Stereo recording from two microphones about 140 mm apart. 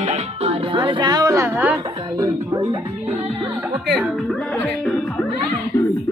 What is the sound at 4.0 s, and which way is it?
Speech, centre (ahead or behind).